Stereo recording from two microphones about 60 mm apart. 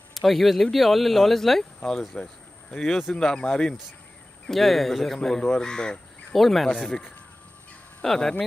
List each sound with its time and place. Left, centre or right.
0.1 s speech: centre
4.5 s speech: centre
8.0 s speech: centre